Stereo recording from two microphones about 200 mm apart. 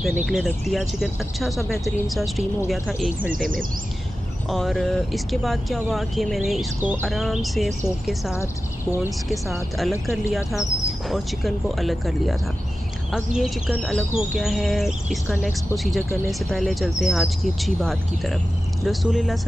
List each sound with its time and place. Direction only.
0.0 s speech: 5° right (ahead or behind)
3.3 s speech: 45° right (ahead or behind)
4.5 s speech: centre (ahead or behind)
9.3 s speech: centre (ahead or behind)